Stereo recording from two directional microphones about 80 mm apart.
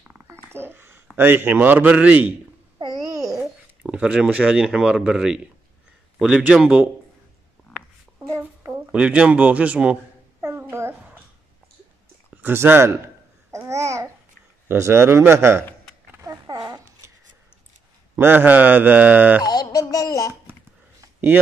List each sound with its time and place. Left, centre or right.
0.3 s babbling: right
1.1 s speech: right
2.8 s babbling: right
3.8 s speech: centre
8.9 s speech: centre
10.4 s babbling: right
12.3 s speech: right
13.5 s babbling: right
14.7 s a man's voice: right
16.3 s a sound: right
18.1 s speech: right
19.4 s speech: left